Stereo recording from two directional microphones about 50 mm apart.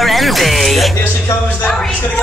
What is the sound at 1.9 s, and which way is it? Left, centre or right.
Speech, left.